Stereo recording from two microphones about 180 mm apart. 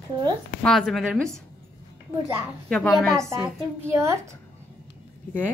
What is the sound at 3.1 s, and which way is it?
Speech, 15° right (ahead or behind).